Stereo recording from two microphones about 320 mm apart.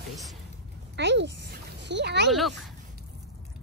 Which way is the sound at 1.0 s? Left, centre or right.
Right.